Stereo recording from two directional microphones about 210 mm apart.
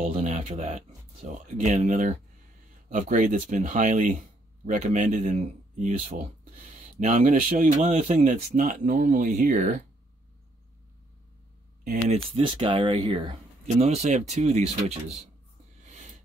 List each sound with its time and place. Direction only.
0.0 s speech: 35° right (ahead or behind)
11.8 s speech: 35° right (ahead or behind)
12.4 s speech: 25° right (ahead or behind)
15.8 s a sound: 35° right (ahead or behind)